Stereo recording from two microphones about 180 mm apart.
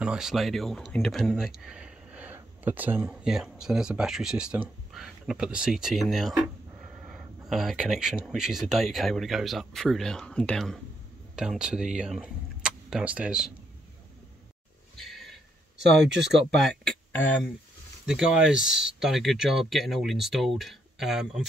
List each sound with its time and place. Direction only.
0.0 s speech: 5° right (ahead or behind)
15.0 s a sound: centre (ahead or behind)
16.4 s speech: 5° left (ahead or behind)
18.0 s speech: 5° right (ahead or behind)